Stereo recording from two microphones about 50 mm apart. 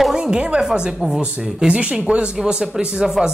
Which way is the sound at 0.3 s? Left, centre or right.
Centre.